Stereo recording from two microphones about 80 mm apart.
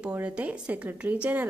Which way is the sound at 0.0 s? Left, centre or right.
Centre.